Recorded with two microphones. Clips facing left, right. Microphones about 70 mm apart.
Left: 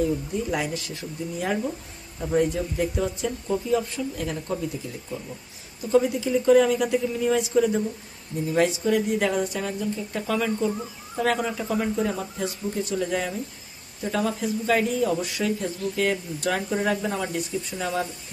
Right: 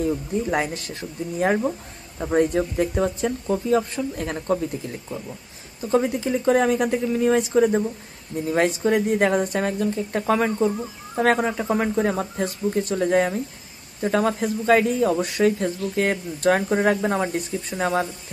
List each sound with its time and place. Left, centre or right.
0.5 s speech: right
5.9 s speech: right